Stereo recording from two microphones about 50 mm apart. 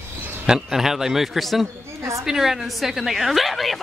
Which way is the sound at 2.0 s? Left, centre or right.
Right.